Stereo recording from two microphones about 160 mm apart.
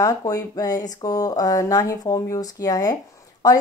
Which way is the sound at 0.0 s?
20° left (ahead or behind).